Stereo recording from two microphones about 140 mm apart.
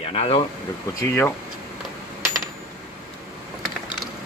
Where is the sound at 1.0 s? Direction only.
15° left (ahead or behind).